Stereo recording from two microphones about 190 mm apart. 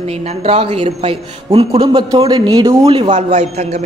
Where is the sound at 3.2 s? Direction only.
35° right (ahead or behind).